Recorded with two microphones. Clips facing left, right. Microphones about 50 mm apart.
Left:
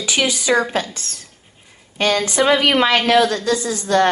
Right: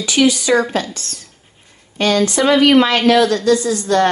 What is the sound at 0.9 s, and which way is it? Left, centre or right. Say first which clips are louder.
Speech: right 1 dB; left.